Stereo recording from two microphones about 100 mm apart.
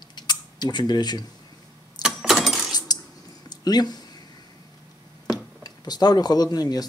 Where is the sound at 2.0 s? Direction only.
5° right (ahead or behind).